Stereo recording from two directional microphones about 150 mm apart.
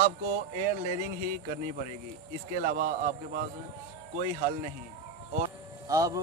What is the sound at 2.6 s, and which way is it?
Speech, 70° right (ahead or behind).